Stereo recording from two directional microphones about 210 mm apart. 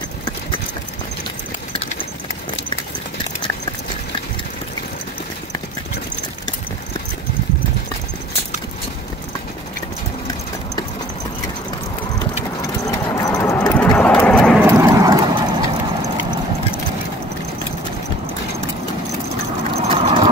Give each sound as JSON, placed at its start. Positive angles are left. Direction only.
{"t": 12.8, "sound": "clip-clop", "side_deg": 15}
{"t": 14.7, "sound": "clip-clop", "side_deg": -15}
{"t": 19.9, "sound": "horse", "side_deg": -25}